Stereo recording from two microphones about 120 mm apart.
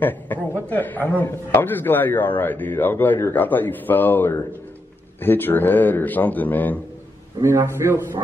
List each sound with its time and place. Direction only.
0.0 s a man's voice: 15° left (ahead or behind)
7.4 s a man's voice: 25° right (ahead or behind)